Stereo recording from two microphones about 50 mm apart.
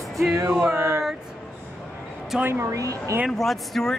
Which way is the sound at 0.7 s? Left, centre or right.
Right.